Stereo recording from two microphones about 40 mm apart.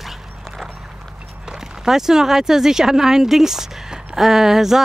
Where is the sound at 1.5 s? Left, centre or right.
Centre.